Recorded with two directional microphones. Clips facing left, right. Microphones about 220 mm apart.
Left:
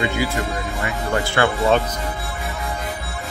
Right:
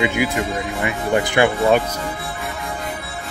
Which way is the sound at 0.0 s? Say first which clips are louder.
Right 2 dB; 15° right (ahead or behind).